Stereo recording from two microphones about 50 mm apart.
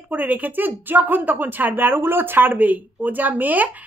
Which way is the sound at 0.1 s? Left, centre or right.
Right.